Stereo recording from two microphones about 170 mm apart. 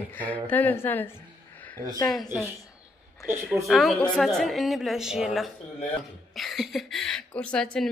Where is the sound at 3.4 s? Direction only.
Centre (ahead or behind).